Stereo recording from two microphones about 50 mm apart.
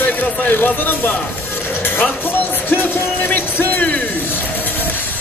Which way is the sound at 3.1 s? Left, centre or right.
Left.